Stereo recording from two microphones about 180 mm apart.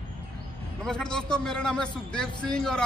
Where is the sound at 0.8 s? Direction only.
5° left (ahead or behind).